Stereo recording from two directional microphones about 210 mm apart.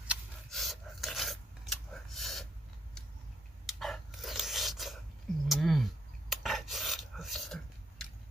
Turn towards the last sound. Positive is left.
turn(degrees=0)  # may be behind; listen again after turning